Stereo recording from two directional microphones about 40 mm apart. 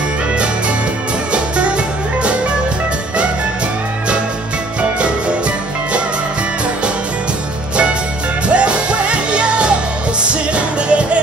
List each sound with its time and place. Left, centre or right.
1.3 s music: right
8.5 s music: right